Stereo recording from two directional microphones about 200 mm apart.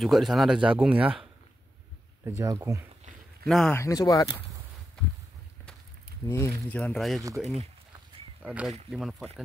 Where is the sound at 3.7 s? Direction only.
15° left (ahead or behind).